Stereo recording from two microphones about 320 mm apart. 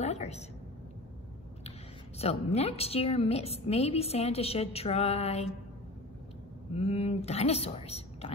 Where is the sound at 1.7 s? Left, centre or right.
Centre.